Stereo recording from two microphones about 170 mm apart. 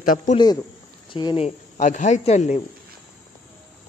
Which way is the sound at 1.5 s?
45° left (ahead or behind).